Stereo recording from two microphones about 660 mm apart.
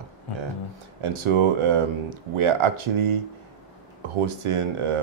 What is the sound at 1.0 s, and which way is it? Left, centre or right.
Speech, right.